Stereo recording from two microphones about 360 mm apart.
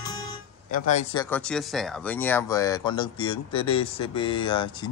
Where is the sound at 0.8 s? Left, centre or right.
Centre.